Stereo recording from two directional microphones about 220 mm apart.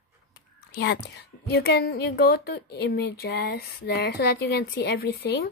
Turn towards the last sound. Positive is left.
turn(degrees=45)  # may be behind; listen again after turning